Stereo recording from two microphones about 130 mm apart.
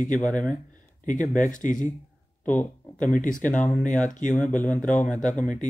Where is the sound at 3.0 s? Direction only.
90° left.